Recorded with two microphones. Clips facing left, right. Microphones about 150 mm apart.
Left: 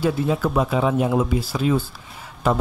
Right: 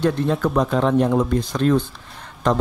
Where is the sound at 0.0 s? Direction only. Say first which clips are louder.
Right 1 dB; 5° left (ahead or behind).